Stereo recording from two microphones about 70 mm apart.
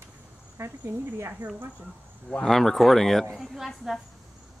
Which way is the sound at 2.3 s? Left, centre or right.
Centre.